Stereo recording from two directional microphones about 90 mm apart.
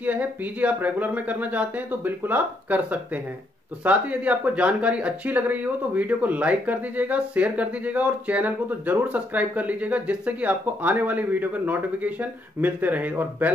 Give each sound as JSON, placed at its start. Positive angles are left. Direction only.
{"t": 0.0, "sound": "speech", "side_deg": -15}